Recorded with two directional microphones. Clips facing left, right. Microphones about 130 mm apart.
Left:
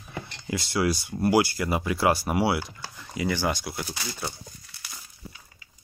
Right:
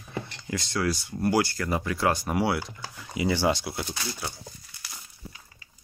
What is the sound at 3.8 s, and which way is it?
Speech, 5° left (ahead or behind).